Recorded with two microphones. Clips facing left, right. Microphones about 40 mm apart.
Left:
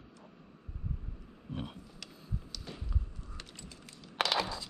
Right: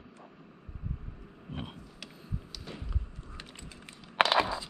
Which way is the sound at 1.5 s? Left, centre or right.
Centre.